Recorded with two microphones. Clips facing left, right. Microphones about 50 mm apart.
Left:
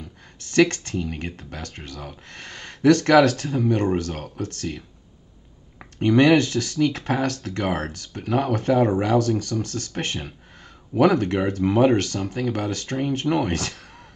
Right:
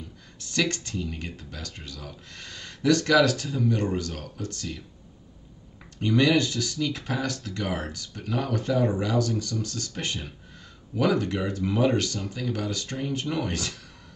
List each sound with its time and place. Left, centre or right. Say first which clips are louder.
0.4 s speech: left 9 dB; left
5.9 s speech: left 6 dB; left